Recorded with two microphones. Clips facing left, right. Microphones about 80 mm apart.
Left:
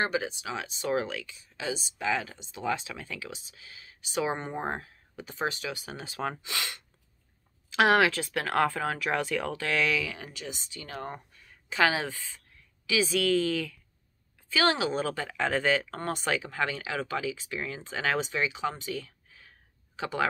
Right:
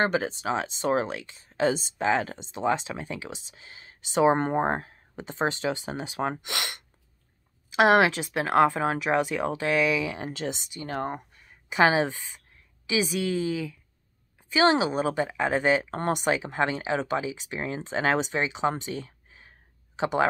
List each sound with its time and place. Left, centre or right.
0.0 s speech: right
7.7 s speech: centre